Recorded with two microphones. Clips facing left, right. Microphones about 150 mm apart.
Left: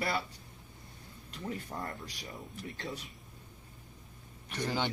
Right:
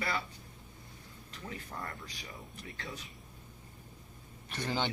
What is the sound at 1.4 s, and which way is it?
Speech, 25° left (ahead or behind).